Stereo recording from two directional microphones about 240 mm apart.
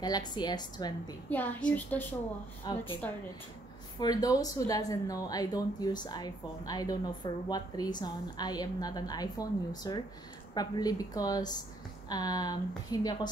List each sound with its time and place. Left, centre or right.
0.0 s speech: centre
4.0 s speech: centre